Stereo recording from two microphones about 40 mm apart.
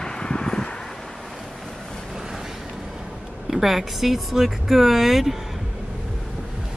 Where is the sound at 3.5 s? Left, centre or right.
Centre.